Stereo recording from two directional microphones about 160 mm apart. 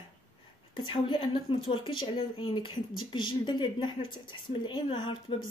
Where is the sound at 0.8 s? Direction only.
30° left (ahead or behind).